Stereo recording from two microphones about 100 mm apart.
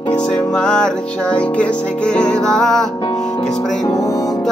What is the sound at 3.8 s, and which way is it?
Music, 35° left (ahead or behind).